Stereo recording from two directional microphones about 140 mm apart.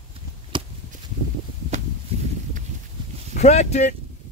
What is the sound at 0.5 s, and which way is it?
Chop, 35° right (ahead or behind).